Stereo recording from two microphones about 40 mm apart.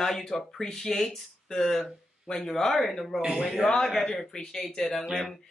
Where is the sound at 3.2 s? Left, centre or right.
Centre.